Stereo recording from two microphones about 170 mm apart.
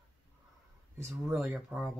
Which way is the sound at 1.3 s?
5° right (ahead or behind).